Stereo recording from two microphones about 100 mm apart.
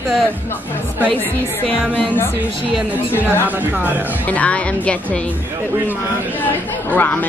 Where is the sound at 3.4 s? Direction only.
15° right (ahead or behind).